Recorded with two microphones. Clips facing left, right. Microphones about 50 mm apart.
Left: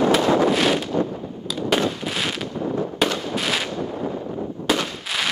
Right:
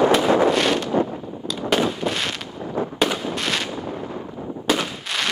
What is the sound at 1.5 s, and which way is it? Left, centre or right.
Fireworks, centre.